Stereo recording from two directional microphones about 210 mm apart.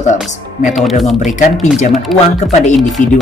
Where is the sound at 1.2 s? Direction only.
35° left (ahead or behind).